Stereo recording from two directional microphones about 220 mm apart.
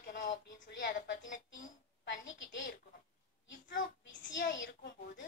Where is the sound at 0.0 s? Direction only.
40° left (ahead or behind).